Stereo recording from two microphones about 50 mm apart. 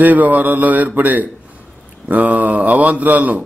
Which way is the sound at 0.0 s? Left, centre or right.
Right.